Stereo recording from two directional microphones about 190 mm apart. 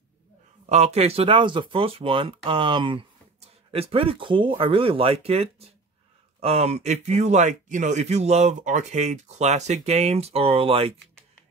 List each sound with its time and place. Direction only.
0.7 s speech: 35° right (ahead or behind)